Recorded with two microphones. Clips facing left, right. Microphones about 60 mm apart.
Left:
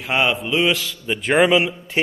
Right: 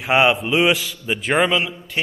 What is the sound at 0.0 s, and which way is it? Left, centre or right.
A man's voice, centre.